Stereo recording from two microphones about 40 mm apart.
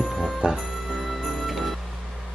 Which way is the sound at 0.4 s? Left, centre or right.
Right.